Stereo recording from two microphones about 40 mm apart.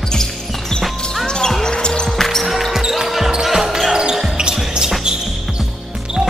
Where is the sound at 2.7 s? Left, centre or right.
Centre.